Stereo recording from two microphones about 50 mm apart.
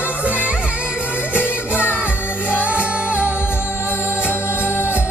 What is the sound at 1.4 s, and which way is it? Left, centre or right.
Music, right.